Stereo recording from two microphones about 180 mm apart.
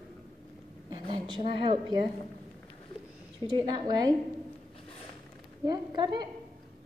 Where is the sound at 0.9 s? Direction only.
30° right (ahead or behind).